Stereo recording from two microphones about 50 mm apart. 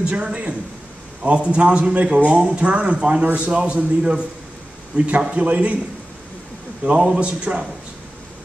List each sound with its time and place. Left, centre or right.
0.0 s a man's voice: right
4.9 s speech: right
6.8 s speech: right